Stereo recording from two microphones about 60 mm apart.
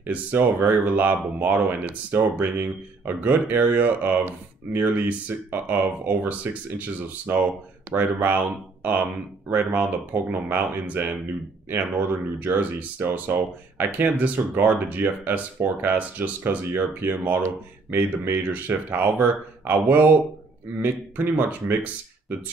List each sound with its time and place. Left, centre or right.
0.0 s speech: right
7.3 s speech: right
17.9 s speech: right